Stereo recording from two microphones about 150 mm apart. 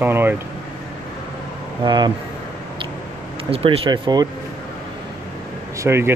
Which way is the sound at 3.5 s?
40° right (ahead or behind).